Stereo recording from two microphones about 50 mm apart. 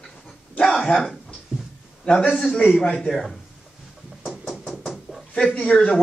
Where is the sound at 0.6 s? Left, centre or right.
Centre.